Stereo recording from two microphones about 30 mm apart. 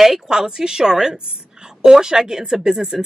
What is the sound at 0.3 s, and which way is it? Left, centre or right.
A woman's voice, centre.